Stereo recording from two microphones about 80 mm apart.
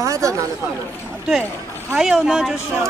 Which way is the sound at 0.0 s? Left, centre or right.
Right.